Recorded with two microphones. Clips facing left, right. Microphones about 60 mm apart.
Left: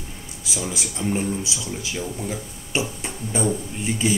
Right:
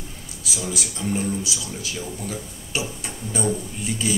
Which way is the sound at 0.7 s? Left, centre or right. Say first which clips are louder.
Left 1 dB; left.